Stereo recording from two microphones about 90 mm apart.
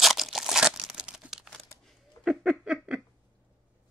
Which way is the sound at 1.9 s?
Centre (ahead or behind).